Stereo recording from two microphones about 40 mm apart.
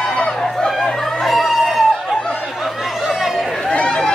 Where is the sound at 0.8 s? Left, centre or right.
Centre.